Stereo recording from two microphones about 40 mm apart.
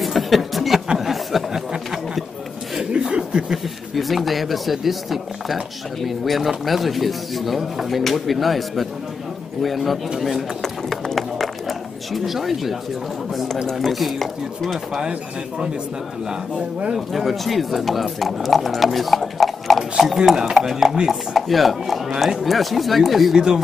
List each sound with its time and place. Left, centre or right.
0.0 s a sound: centre
2.8 s chuckle: right
3.9 s speech: centre
10.6 s run: centre
12.1 s speech: centre
13.7 s speech: centre
16.3 s speech: right
16.9 s speech: centre
23.3 s speech: centre